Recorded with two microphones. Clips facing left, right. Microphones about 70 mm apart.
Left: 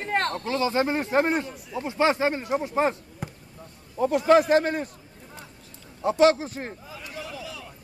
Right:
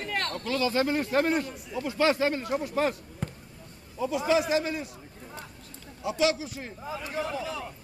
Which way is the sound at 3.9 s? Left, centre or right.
Left.